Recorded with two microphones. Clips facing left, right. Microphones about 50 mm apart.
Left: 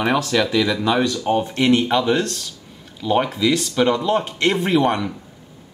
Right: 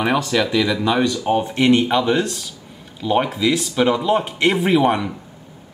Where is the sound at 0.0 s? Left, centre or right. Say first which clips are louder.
Even; centre.